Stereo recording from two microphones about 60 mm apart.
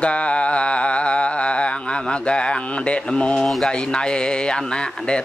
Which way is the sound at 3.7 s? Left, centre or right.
Centre.